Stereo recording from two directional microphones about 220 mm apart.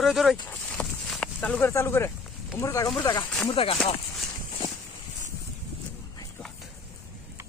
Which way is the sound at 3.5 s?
25° left (ahead or behind).